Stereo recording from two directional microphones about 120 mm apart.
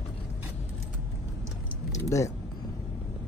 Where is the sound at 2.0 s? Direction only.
25° left (ahead or behind).